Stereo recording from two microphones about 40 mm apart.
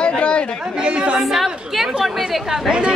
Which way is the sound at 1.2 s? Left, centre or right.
Centre.